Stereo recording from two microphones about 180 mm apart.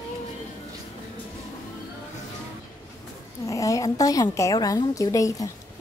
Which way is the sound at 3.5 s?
20° left (ahead or behind).